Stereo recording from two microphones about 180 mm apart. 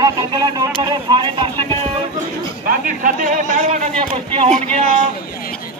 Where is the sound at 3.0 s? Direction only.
45° right (ahead or behind).